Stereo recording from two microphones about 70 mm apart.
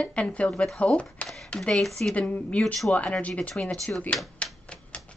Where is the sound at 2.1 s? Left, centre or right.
Centre.